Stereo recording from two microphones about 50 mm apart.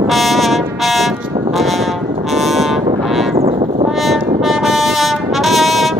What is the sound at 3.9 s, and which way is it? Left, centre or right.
Brass instrument, centre.